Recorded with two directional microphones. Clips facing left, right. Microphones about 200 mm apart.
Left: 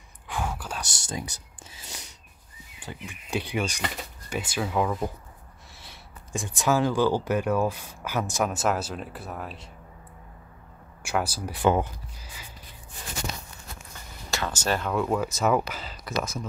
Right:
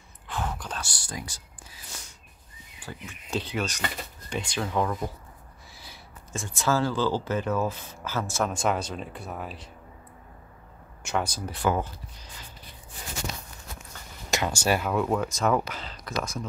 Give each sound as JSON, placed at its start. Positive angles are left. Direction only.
{"t": 0.3, "sound": "whispering", "side_deg": 10}
{"t": 0.8, "sound": "speech", "side_deg": 25}
{"t": 5.7, "sound": "a sound", "side_deg": 0}
{"t": 6.3, "sound": "speech", "side_deg": 15}
{"t": 11.0, "sound": "speech", "side_deg": 10}
{"t": 11.6, "sound": "speech", "side_deg": 20}
{"t": 14.3, "sound": "speech", "side_deg": -15}